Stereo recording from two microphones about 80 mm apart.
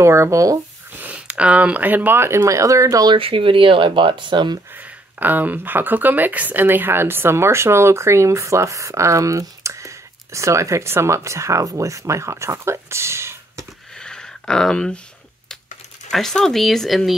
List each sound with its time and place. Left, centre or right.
0.0 s speech: right
0.9 s speech: centre; by 3.1 s right
3.1 s speech: right
5.2 s speech: right
14.0 s a sound: centre
16.1 s speech: centre